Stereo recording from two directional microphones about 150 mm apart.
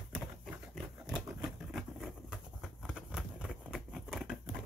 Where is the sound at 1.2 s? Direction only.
5° right (ahead or behind).